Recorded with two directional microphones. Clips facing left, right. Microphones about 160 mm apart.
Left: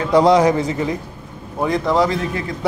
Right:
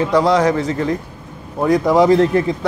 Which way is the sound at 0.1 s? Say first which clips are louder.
Left 4 dB; 15° left (ahead or behind).